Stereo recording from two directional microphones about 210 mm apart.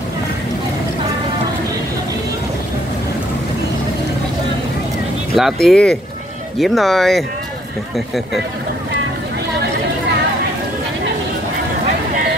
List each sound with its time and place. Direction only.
5.3 s speech: centre (ahead or behind)